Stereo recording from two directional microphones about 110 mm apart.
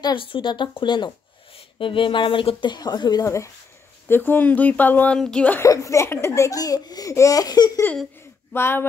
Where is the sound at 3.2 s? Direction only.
25° left (ahead or behind).